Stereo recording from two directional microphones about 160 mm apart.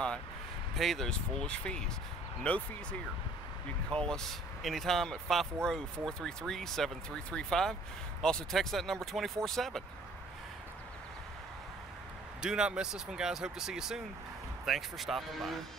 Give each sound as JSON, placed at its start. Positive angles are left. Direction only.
{"t": 0.7, "sound": "speech", "side_deg": 0}
{"t": 12.4, "sound": "speech", "side_deg": -5}